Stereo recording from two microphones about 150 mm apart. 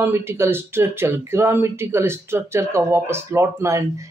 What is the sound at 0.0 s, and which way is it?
Speech, 15° right (ahead or behind).